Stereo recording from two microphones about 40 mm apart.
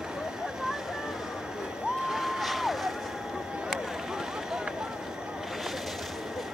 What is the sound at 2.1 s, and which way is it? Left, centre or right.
Vehicle, centre.